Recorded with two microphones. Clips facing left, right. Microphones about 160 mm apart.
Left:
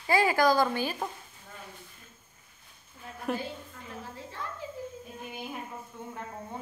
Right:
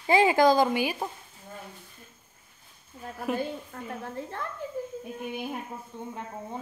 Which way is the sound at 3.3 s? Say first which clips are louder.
Right 4 dB; 55° right (ahead or behind).